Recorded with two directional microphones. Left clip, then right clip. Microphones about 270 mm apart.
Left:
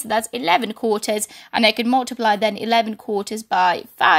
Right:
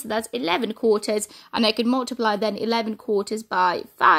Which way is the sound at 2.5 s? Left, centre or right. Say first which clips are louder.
Left 5 dB; left.